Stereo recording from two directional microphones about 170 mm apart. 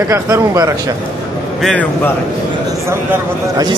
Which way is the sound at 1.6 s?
10° left (ahead or behind).